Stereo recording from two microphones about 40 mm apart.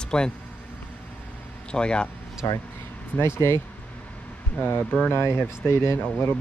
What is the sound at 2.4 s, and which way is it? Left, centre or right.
Speech, left.